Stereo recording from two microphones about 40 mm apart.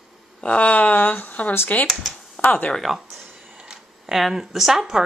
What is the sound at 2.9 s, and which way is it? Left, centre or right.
Speech, centre.